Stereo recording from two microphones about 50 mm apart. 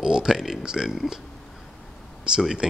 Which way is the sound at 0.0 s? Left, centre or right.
Centre.